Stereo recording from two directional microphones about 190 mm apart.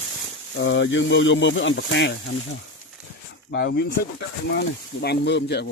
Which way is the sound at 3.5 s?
60° left (ahead or behind).